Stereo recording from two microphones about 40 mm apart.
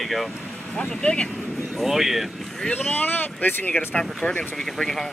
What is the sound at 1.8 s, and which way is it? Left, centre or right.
Speech, centre.